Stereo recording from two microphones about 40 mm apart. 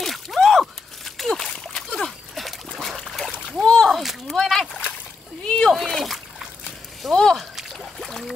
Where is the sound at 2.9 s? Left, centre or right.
Centre.